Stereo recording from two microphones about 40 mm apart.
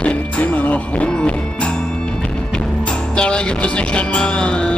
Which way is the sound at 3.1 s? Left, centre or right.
Left.